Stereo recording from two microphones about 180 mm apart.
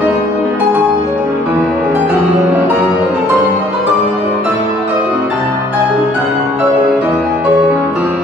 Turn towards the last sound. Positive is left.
turn(degrees=-10)  # may be behind; listen again after turning